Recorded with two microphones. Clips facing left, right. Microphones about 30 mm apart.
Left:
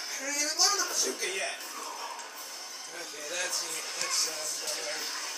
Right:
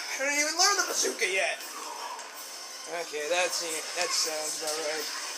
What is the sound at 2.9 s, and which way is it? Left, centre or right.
Speech, right.